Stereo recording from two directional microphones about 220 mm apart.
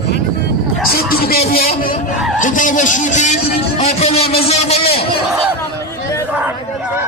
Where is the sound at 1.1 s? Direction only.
45° left (ahead or behind).